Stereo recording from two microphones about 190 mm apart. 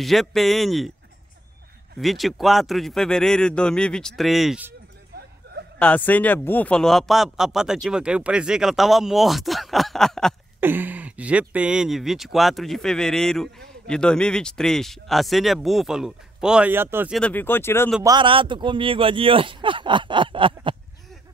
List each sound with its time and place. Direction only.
0.0 s speech: centre (ahead or behind)
2.0 s speech: centre (ahead or behind)
5.4 s a sound: 60° right (ahead or behind)
5.8 s speech: 10° left (ahead or behind)
10.6 s speech: 10° right (ahead or behind)
17.1 s speech: 5° left (ahead or behind)
18.0 s speech: 25° right (ahead or behind)